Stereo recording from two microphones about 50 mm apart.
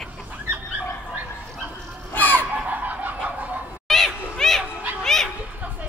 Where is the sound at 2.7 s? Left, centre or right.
Right.